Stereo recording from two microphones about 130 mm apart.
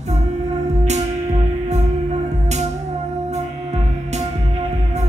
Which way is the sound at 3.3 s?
60° right (ahead or behind).